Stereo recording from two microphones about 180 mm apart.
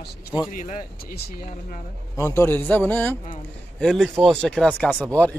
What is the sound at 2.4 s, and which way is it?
A man's voice, 10° left (ahead or behind).